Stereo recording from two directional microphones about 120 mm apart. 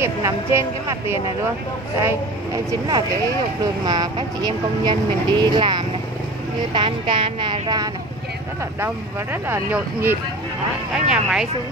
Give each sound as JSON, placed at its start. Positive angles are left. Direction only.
{"t": 0.0, "sound": "speech", "side_deg": -20}
{"t": 8.8, "sound": "speech", "side_deg": -15}